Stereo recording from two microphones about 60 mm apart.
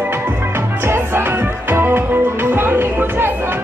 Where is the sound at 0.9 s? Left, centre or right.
Right.